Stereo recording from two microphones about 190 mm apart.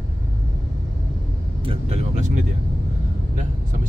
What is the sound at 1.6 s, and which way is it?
Speech, 30° right (ahead or behind).